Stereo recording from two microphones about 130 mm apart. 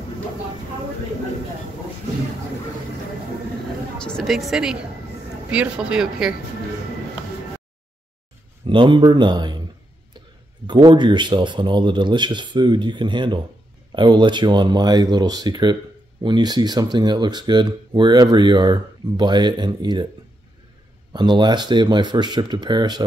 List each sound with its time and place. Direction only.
4.0 s a woman's voice: 5° left (ahead or behind)
8.6 s speech: 40° right (ahead or behind)
10.7 s speech: 35° right (ahead or behind)
21.1 s speech: 35° right (ahead or behind)